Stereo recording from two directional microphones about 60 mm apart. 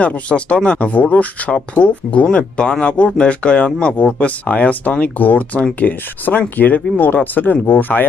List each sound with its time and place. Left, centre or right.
0.0 s speech: left